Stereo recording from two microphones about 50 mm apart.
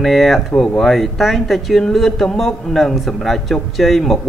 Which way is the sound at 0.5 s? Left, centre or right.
Centre.